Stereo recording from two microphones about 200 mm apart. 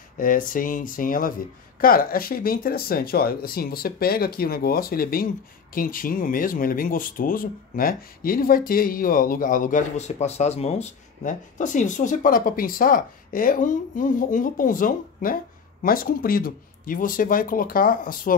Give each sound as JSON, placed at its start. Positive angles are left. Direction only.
{"t": 0.2, "sound": "speech", "side_deg": 45}